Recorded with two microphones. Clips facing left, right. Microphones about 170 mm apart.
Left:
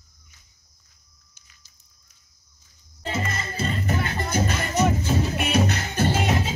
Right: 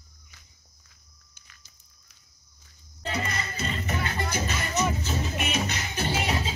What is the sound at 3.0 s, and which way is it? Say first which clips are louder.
Music: left 2 dB; 25° left (ahead or behind).